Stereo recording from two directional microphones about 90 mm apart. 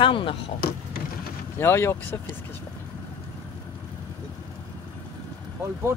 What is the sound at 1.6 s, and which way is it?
Speech, 30° left (ahead or behind).